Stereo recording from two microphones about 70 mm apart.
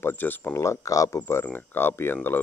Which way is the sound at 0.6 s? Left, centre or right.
Left.